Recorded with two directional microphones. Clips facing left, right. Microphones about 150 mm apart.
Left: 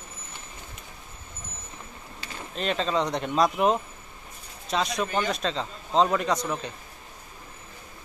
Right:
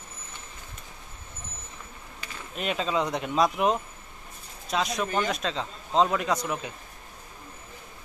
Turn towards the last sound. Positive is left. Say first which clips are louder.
# left 1 dB
turn(degrees=-5)  # may be behind; listen again after turning